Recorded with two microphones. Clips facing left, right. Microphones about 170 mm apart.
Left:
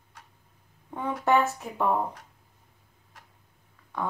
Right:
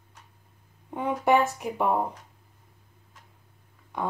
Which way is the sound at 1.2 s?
15° right (ahead or behind).